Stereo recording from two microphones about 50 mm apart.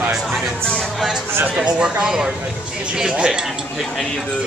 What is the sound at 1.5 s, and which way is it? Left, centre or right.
Speech, centre.